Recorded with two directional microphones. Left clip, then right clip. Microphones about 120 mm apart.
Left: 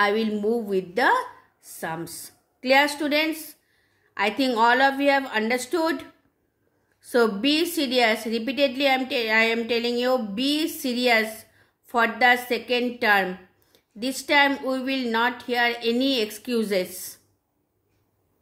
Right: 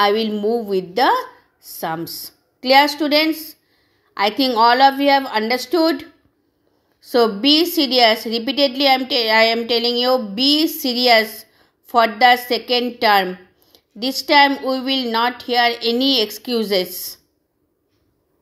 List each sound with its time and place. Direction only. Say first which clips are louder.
0.0 s a woman's voice: right 6 dB; 20° right (ahead or behind)
7.1 s a woman's voice: right 6 dB; 15° right (ahead or behind)
13.3 s a sound: right 5 dB; 25° right (ahead or behind)
14.6 s a woman's voice: right 6 dB; 25° right (ahead or behind)